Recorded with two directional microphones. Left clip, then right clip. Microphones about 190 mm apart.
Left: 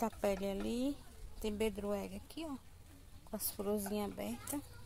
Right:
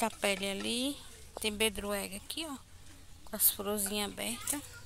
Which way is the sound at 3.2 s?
15° right (ahead or behind).